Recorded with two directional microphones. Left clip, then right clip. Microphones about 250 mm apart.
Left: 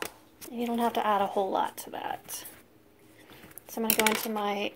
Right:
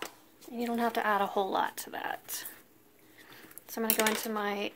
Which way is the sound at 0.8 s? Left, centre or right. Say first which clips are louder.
Left 3 dB; right.